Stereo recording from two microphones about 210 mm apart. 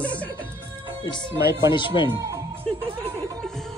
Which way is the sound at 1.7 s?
20° left (ahead or behind).